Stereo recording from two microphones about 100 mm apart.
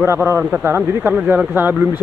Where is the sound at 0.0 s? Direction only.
25° right (ahead or behind).